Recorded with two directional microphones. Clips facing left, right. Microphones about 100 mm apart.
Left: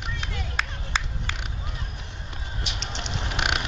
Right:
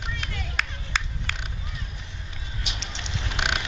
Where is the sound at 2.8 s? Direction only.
55° left (ahead or behind).